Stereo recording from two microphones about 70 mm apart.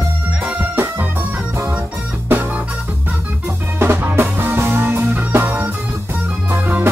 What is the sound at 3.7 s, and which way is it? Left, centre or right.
Music, right.